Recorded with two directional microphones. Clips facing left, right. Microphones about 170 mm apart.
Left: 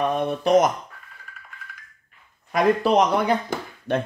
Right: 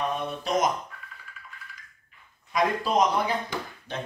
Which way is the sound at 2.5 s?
65° left (ahead or behind).